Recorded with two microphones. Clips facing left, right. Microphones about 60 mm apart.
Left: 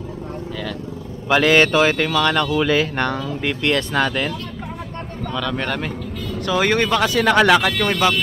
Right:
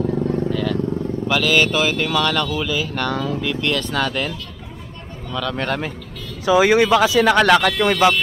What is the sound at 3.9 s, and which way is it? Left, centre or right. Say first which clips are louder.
Speech: left 2 dB; centre.